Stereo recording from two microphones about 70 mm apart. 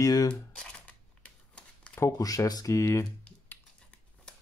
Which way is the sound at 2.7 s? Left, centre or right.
Left.